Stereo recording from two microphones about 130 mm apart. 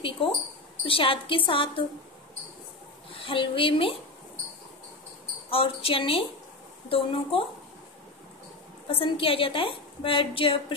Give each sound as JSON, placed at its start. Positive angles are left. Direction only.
{"t": 0.2, "sound": "a woman's voice", "side_deg": 45}
{"t": 3.2, "sound": "a woman's voice", "side_deg": 40}
{"t": 5.5, "sound": "a woman's voice", "side_deg": 45}
{"t": 8.8, "sound": "a woman's voice", "side_deg": 45}